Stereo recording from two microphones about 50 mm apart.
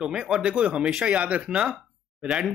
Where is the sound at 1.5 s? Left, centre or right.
Centre.